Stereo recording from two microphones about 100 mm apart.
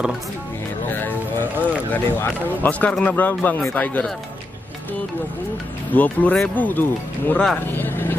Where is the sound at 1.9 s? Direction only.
15° left (ahead or behind).